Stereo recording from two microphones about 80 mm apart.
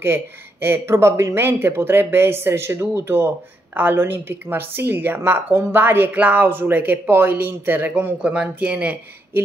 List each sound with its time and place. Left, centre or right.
0.0 s a woman's voice: right